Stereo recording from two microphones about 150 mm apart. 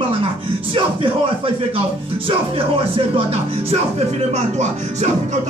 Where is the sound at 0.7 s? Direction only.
35° right (ahead or behind).